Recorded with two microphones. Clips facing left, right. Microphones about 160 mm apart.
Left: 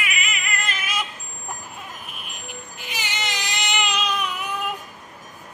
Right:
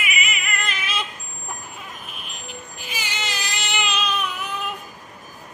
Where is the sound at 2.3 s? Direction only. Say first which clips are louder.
Right 1 dB; 60° left (ahead or behind).